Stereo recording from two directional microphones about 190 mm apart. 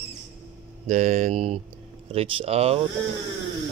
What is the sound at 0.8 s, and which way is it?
Speech, 40° right (ahead or behind).